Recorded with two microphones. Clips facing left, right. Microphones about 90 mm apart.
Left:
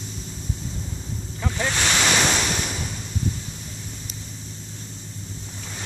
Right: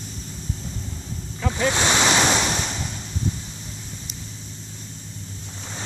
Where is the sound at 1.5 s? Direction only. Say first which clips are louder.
Right 3 dB; 20° right (ahead or behind).